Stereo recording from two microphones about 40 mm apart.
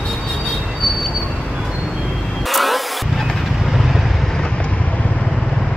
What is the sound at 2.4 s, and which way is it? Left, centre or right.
Vehicle, centre.